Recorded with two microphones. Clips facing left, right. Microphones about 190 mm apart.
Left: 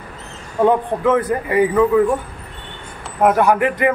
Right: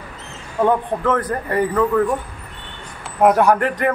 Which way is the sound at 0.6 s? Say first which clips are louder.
Left 2 dB; 10° left (ahead or behind).